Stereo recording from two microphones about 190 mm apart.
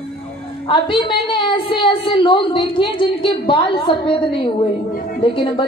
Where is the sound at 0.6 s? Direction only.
25° left (ahead or behind).